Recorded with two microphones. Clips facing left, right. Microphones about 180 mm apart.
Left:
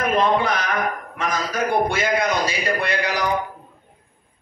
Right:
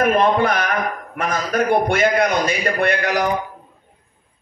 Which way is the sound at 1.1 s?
55° right (ahead or behind).